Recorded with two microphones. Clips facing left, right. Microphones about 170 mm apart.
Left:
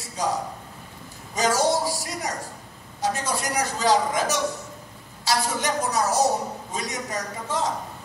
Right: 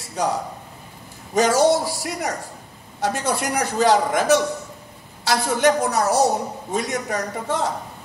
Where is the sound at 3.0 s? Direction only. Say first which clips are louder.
Right 3 dB; 60° right (ahead or behind).